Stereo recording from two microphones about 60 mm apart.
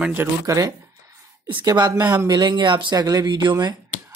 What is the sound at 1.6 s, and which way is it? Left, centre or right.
Speech, right.